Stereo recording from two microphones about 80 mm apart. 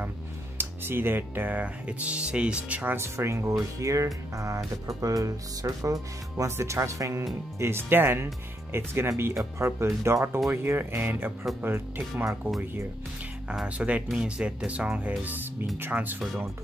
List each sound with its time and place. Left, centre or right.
0.6 s speech: right
3.0 s music: right
7.5 s speech: right
8.7 s music: right
10.5 s speech: right
13.5 s speech: centre